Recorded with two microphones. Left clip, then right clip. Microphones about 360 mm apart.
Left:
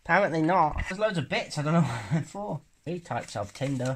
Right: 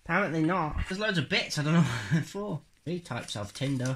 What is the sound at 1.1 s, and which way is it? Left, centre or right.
Speech, centre.